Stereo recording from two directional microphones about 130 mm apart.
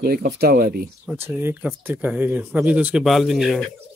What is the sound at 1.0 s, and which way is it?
Speech, 15° right (ahead or behind).